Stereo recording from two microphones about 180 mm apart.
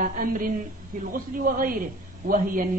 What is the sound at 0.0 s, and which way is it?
Speech, 50° right (ahead or behind).